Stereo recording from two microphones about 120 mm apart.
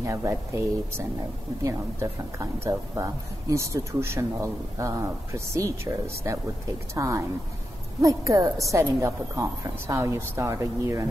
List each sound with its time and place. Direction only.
0.0 s speech: 25° right (ahead or behind)